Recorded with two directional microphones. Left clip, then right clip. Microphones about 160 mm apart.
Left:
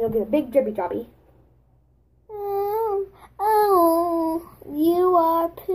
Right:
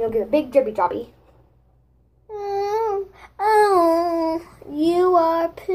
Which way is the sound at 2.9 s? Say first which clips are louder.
Right 1 dB; 5° right (ahead or behind).